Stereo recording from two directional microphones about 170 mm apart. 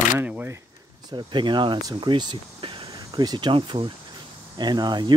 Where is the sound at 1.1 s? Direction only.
30° right (ahead or behind).